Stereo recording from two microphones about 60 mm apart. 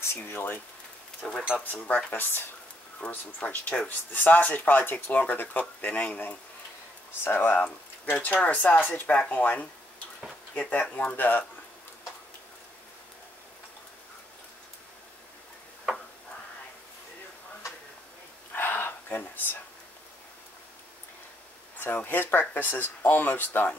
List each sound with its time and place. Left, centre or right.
0.0 s speech: left
1.2 s speech: centre
1.6 s speech: left
18.5 s a sound: left
21.7 s speech: left